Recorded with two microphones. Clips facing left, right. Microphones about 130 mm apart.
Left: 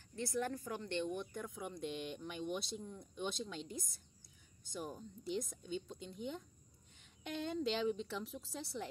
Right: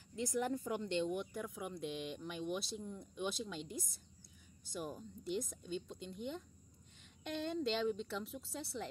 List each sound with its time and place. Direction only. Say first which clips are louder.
0.1 s speech: right 2 dB; 15° right (ahead or behind)